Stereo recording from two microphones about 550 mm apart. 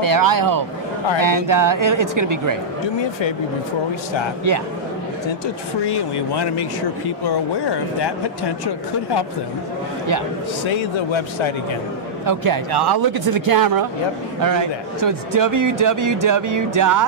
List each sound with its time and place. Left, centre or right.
0.0 s a man's voice: right
5.9 s speech: left
10.6 s speech: left
12.3 s a man's voice: right